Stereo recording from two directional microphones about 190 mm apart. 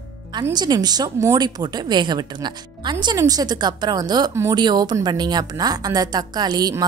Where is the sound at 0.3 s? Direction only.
20° right (ahead or behind).